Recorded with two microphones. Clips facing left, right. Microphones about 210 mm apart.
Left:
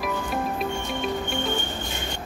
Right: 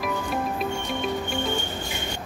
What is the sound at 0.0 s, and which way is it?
Music, centre (ahead or behind).